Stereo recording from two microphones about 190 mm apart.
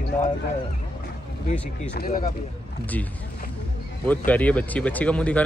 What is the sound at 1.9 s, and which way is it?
Speech, 50° left (ahead or behind).